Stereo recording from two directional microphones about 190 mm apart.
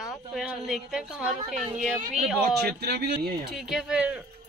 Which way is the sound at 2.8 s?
55° right (ahead or behind).